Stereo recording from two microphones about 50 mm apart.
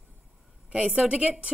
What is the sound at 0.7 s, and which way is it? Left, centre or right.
Speech, right.